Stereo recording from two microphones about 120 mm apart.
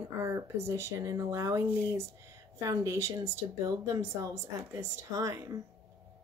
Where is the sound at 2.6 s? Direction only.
25° right (ahead or behind).